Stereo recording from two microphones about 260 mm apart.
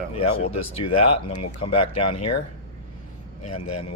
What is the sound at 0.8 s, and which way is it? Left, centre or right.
Speech, left.